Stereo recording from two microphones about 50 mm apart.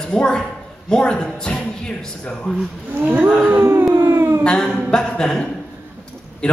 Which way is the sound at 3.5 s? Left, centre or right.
Right.